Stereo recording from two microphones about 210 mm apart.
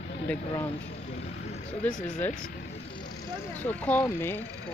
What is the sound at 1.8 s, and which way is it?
Speech, 5° left (ahead or behind).